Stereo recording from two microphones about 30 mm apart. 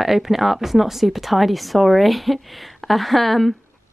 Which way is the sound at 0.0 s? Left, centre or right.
Centre.